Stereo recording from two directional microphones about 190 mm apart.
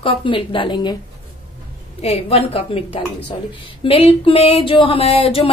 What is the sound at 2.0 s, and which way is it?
A woman's voice, 35° left (ahead or behind).